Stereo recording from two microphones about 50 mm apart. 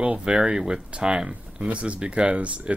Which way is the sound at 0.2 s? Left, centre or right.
Right.